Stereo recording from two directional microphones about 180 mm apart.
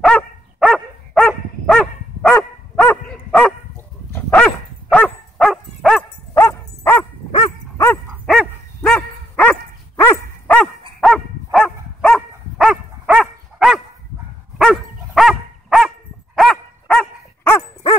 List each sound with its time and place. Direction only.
0.0 s dog: centre (ahead or behind)
8.3 s dog: 5° left (ahead or behind)